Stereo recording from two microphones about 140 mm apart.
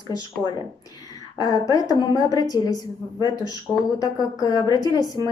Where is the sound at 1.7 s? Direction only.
25° left (ahead or behind).